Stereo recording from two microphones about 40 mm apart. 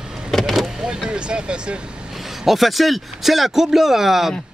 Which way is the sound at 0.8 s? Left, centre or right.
Centre.